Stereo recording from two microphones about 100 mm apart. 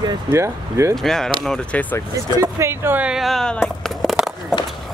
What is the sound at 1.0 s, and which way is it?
Speech, 5° left (ahead or behind).